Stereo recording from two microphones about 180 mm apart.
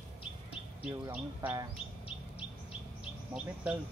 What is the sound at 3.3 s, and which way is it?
Speech, 5° right (ahead or behind).